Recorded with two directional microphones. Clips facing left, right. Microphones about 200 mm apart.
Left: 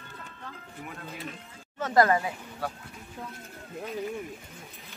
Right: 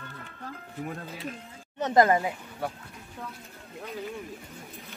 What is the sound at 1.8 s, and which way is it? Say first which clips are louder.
Speech: right 1 dB; 20° right (ahead or behind).